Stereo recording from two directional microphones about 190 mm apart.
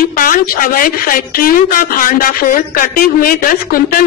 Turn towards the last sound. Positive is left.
turn(degrees=45)  # may be behind; listen again after turning